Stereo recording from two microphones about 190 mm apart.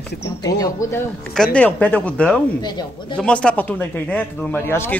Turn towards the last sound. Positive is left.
turn(degrees=10)  # may be behind; listen again after turning